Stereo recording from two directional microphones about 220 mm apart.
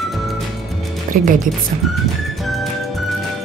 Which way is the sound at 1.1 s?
40° right (ahead or behind).